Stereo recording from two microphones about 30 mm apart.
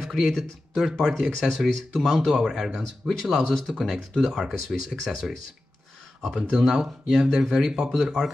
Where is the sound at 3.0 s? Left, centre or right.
Centre.